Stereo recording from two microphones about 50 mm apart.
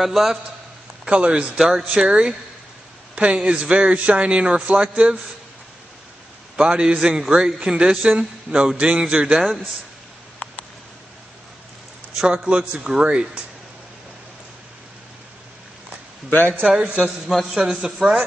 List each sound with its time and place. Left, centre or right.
0.0 s a man's voice: centre
1.1 s a man's voice: right
1.6 s a man's voice: centre
6.5 s a man's voice: centre
12.4 s a man's voice: centre
16.3 s a man's voice: left
16.6 s a man's voice: centre
17.0 s a man's voice: centre